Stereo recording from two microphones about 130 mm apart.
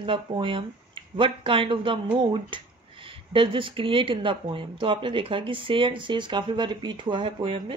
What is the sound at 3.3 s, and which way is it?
Speech, 40° right (ahead or behind).